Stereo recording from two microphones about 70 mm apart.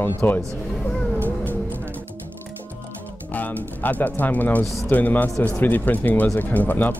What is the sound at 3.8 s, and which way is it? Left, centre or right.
Speech, left.